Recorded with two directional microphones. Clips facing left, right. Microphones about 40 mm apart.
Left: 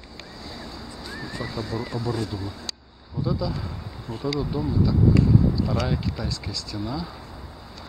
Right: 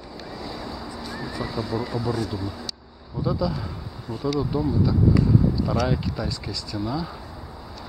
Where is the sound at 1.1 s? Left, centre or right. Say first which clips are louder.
Right 1 dB; centre.